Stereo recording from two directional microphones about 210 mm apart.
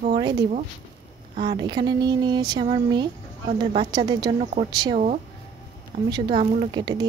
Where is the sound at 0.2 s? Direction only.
20° right (ahead or behind).